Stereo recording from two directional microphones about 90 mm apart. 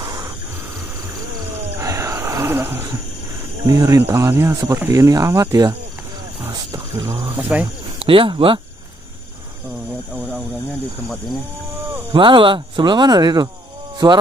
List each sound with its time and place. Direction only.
0.0 s a sound: 45° right (ahead or behind)
1.8 s wild animals: 35° right (ahead or behind)
3.6 s speech: 40° right (ahead or behind)
4.0 s speech: 30° right (ahead or behind); by 5.8 s 45° right (ahead or behind)
6.4 s speech: 30° right (ahead or behind)
7.3 s speech: 15° right (ahead or behind)
8.0 s speech: 85° right
12.1 s speech: 65° right (ahead or behind); by 14.2 s 45° right (ahead or behind)